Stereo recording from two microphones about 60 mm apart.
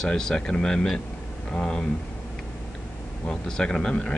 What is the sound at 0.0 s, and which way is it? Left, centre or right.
Speech, centre.